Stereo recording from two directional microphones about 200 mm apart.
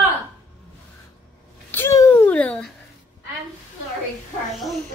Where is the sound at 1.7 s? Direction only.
15° left (ahead or behind).